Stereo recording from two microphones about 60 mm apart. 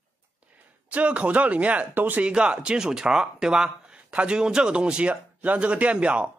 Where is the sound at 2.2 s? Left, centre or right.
Centre.